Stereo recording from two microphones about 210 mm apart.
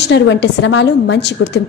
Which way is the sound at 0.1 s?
55° left (ahead or behind).